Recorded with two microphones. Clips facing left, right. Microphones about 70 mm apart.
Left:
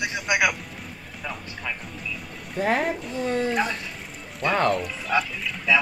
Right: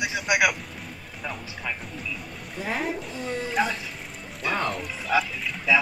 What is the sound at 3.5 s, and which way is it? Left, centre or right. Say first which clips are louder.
Speech: even; centre.